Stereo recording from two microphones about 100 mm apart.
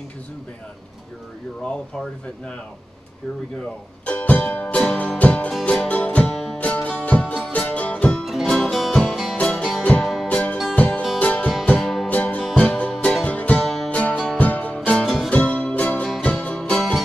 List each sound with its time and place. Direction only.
1.6 s speech: 10° left (ahead or behind)
4.0 s music: 15° left (ahead or behind)
6.3 s music: centre (ahead or behind)
6.6 s music: 15° left (ahead or behind)
8.3 s music: centre (ahead or behind)
9.4 s music: 10° left (ahead or behind)
11.7 s music: centre (ahead or behind)
12.1 s music: 15° left (ahead or behind)